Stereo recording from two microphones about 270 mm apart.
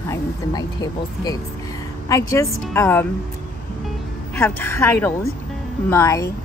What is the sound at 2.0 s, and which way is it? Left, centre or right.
Speech, centre.